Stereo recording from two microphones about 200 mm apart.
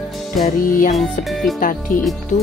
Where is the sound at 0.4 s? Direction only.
45° left (ahead or behind).